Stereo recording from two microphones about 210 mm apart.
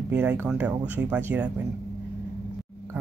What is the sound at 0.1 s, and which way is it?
Speech, 10° right (ahead or behind).